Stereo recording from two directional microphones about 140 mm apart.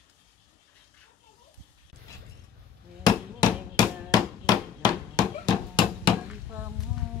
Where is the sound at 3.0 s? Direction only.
30° left (ahead or behind).